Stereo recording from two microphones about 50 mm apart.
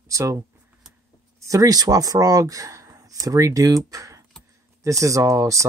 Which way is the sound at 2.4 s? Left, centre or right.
Right.